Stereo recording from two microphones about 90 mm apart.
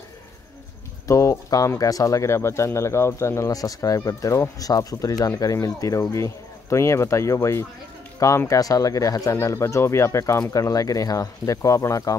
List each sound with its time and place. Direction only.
1.0 s speech: 35° left (ahead or behind)